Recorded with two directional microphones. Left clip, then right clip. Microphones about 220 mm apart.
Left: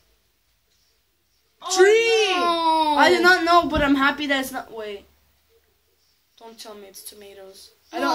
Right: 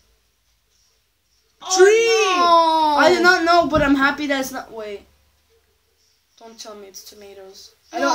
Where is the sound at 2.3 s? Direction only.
20° right (ahead or behind).